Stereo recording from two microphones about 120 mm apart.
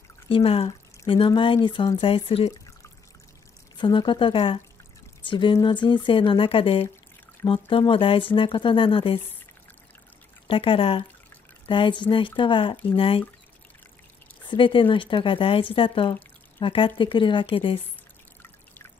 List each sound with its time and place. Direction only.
0.3 s speech: 55° left (ahead or behind)
3.7 s speech: 40° left (ahead or behind)
10.4 s speech: 45° left (ahead or behind)
14.4 s speech: 40° left (ahead or behind)